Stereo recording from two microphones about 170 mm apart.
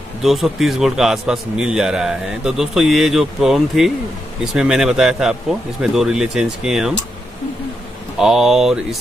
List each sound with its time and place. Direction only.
0.2 s a man's voice: centre (ahead or behind)
8.2 s a man's voice: 5° right (ahead or behind)